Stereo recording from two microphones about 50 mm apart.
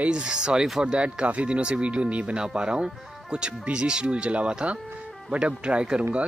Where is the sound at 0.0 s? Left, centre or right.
Centre.